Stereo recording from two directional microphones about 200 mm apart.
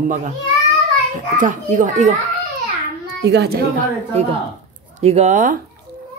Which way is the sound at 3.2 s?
55° right (ahead or behind).